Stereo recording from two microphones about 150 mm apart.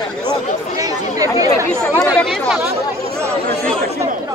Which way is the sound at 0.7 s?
25° right (ahead or behind).